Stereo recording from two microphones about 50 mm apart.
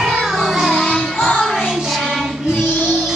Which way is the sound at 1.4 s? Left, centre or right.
Centre.